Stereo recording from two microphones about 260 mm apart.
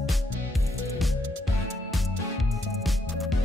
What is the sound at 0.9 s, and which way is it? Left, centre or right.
Music, centre.